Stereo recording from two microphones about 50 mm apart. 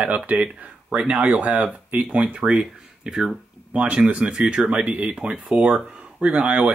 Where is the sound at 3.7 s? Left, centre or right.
Right.